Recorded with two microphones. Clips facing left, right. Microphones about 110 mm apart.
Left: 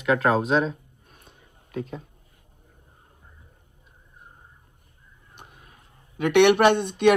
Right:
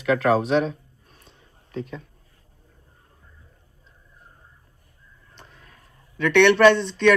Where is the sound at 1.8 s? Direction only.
35° left (ahead or behind).